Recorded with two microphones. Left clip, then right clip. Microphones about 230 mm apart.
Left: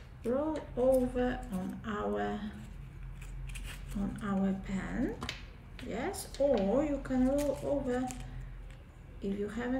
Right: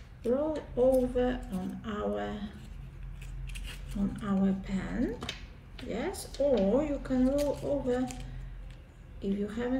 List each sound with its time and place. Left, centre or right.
0.2 s a woman's voice: centre
3.5 s a woman's voice: centre
9.2 s a woman's voice: centre